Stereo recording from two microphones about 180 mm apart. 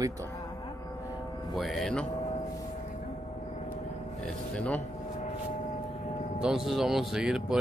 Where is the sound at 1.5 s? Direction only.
Centre (ahead or behind).